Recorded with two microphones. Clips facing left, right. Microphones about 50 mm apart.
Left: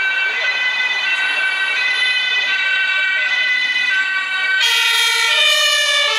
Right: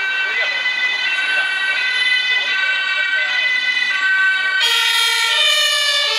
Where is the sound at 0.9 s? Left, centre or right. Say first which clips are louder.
Even; left.